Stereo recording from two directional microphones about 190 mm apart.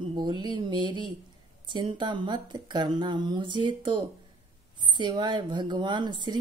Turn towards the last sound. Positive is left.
turn(degrees=-25)  # may be behind; listen again after turning